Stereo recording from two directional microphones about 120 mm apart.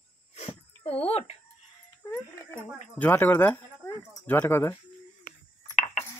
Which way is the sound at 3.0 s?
15° left (ahead or behind).